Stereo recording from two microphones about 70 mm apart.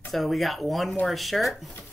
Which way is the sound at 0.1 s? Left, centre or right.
Centre.